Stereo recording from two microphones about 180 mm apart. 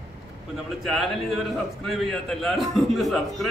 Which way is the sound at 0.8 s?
Centre (ahead or behind).